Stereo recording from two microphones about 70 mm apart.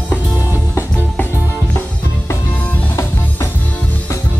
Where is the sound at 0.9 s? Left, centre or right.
Centre.